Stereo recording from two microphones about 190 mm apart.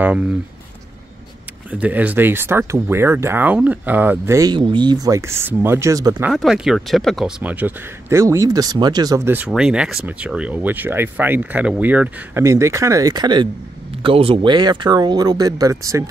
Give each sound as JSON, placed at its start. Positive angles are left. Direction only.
{"t": 1.7, "sound": "speech", "side_deg": -10}
{"t": 6.2, "sound": "speech", "side_deg": -5}